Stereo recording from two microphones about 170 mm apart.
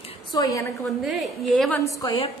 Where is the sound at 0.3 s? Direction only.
20° left (ahead or behind).